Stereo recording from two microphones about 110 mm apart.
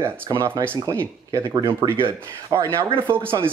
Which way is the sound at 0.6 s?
35° right (ahead or behind).